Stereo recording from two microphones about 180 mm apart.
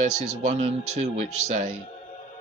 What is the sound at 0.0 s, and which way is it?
Speech, 40° right (ahead or behind).